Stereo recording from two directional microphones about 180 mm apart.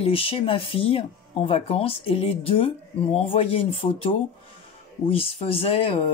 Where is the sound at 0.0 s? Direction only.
30° left (ahead or behind).